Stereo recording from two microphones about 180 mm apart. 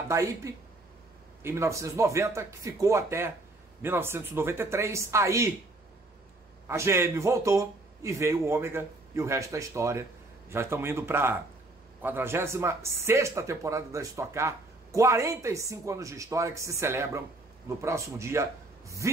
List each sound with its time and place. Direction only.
0.1 s speech: 15° right (ahead or behind)
6.7 s speech: 15° right (ahead or behind)